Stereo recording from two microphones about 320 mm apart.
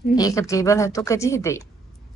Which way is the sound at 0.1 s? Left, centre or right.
Centre.